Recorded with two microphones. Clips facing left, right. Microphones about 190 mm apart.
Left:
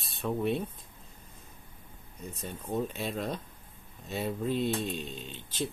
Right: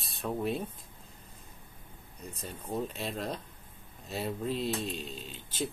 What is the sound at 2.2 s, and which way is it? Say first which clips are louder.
Speech: left 2 dB; centre (ahead or behind).